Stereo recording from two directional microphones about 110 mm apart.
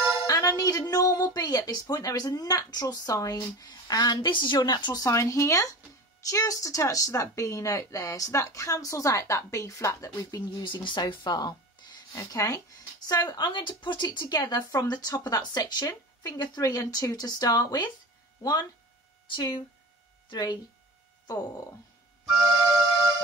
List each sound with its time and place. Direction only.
0.3 s speech: 30° left (ahead or behind)
10.6 s speech: 45° left (ahead or behind)